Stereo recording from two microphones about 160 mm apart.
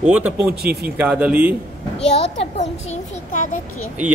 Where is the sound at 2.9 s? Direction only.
50° left (ahead or behind).